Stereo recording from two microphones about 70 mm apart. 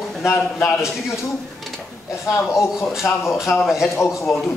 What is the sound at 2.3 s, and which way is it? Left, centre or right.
Speech, left.